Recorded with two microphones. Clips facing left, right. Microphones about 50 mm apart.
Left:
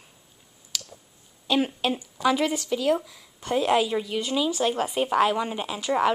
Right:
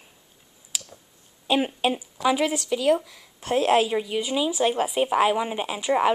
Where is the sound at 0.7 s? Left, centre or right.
Centre.